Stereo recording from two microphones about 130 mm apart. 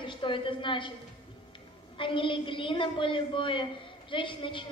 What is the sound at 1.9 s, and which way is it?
A woman's voice, 40° left (ahead or behind).